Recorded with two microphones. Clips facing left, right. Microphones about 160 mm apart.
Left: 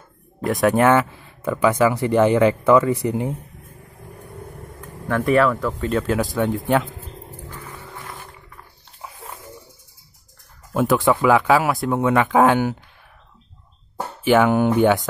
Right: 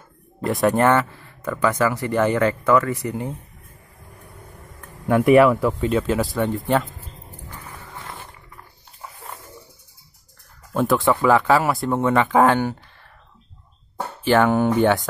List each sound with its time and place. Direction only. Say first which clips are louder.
0.4 s speech: left 1 dB; centre (ahead or behind)
1.1 s speech: left 3 dB; 15° left (ahead or behind)
5.1 s speech: right 4 dB; 5° right (ahead or behind)
7.4 s roaring cats: right 1 dB; 20° right (ahead or behind)
10.7 s speech: left 1 dB; centre (ahead or behind)
14.2 s speech: left 1 dB; 5° left (ahead or behind)